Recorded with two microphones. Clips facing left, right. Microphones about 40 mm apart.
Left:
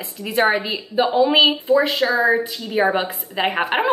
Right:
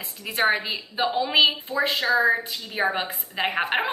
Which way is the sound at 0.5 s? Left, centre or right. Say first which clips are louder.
Left 6 dB; left.